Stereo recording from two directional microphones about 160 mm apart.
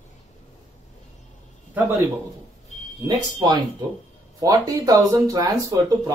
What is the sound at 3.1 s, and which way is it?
Speech, 25° right (ahead or behind).